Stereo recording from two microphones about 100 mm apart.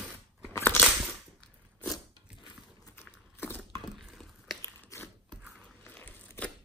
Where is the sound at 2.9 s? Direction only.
20° left (ahead or behind).